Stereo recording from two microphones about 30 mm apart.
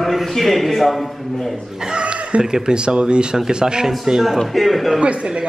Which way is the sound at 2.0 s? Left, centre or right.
Right.